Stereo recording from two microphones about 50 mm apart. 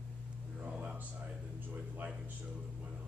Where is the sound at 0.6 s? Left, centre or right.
Right.